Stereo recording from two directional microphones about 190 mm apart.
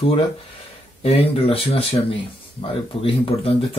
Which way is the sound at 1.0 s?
30° left (ahead or behind).